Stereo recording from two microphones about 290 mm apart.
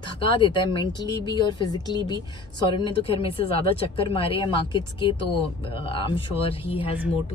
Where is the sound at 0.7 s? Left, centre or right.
Centre.